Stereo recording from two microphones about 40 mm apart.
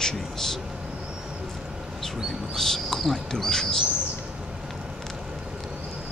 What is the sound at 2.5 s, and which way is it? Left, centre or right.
Speech, centre.